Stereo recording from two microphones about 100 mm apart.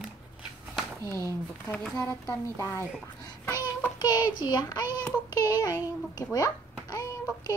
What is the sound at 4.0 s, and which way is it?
A child's voice, 40° left (ahead or behind).